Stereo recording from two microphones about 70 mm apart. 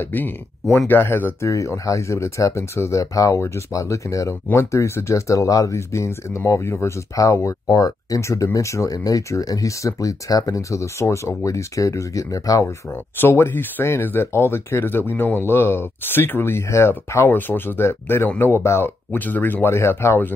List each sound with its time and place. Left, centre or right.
0.0 s speech: left
1.4 s speech: left
13.2 s speech: left
17.3 s speech: left
19.1 s speech: left